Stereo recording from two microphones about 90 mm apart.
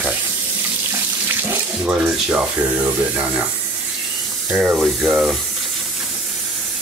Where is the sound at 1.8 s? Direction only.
10° right (ahead or behind).